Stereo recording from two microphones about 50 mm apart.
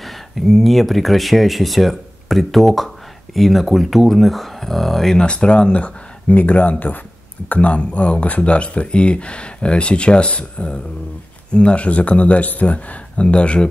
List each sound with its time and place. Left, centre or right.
0.0 s speech: centre
5.2 s speech: centre